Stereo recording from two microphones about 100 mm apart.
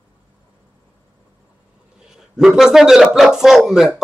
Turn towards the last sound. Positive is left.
turn(degrees=-5)  # may be behind; listen again after turning